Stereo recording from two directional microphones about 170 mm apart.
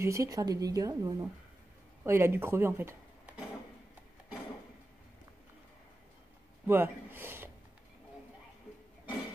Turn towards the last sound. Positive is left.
turn(degrees=-15)  # may be behind; listen again after turning